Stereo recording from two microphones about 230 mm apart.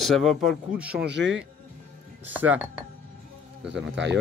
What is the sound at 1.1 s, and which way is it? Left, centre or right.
Speech, right.